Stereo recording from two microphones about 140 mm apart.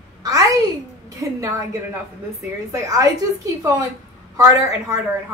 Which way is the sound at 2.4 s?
25° right (ahead or behind).